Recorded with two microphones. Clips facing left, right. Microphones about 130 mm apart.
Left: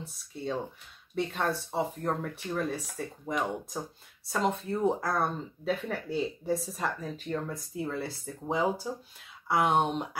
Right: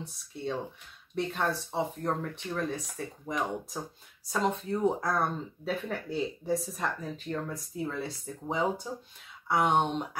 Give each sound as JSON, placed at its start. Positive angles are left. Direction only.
{"t": 0.0, "sound": "speech", "side_deg": 0}